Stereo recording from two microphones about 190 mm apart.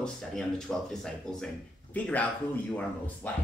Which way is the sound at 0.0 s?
5° left (ahead or behind).